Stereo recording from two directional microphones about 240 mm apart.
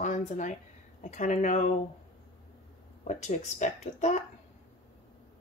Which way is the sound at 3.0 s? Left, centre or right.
Left.